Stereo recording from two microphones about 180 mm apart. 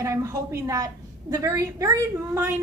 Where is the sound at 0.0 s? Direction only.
15° right (ahead or behind).